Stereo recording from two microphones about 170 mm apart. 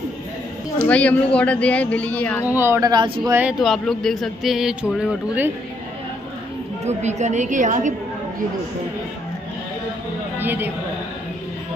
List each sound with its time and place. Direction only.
0.8 s speech: 10° left (ahead or behind)
2.4 s speech: 10° right (ahead or behind)
3.3 s speech: 5° right (ahead or behind)
6.8 s a woman's voice: 40° right (ahead or behind)
10.4 s speech: 10° right (ahead or behind)